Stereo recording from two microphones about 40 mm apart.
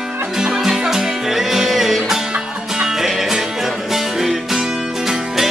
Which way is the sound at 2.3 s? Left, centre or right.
Right.